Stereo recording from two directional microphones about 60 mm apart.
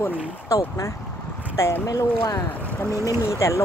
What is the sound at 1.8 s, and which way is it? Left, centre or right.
Speech, left.